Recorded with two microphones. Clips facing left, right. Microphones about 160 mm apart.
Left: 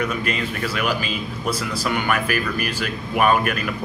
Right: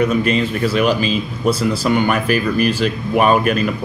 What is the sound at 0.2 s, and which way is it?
Speech, 25° right (ahead or behind).